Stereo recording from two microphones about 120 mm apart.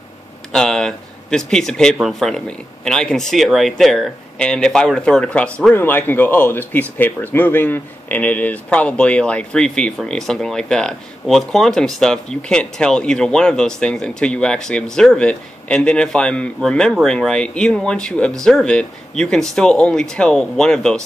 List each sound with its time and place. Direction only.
0.5 s a man's voice: 5° left (ahead or behind)